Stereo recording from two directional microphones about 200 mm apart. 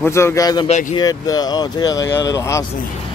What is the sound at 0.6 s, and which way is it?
Speech, 35° left (ahead or behind).